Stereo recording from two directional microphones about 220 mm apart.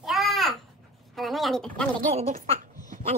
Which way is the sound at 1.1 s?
Centre (ahead or behind).